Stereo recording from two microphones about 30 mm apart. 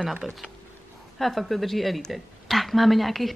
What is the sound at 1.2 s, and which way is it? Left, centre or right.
A woman's voice, centre.